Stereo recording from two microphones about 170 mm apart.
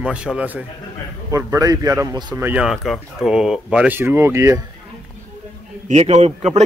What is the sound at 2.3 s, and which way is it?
Speech, 10° right (ahead or behind).